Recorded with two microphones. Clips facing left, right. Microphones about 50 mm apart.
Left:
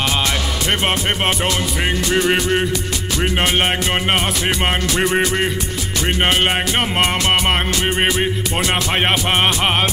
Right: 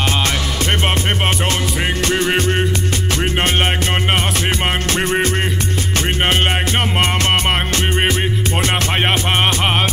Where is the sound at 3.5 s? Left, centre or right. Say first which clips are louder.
Even; centre.